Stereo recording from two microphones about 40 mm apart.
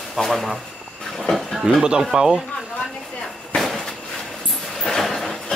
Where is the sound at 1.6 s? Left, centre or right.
Centre.